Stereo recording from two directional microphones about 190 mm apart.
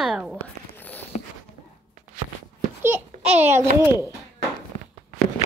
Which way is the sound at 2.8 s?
10° right (ahead or behind).